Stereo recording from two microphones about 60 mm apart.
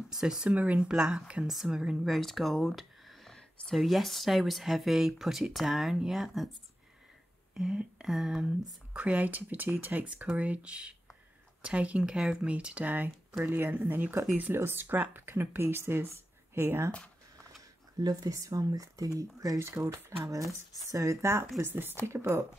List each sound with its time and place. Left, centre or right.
0.1 s speech: centre
1.5 s speech: centre
7.5 s speech: centre
8.9 s speech: right
13.4 s speech: right
14.5 s speech: right
18.0 s speech: right
19.6 s speech: right
20.9 s speech: right
21.5 s speech: right
22.0 s speech: right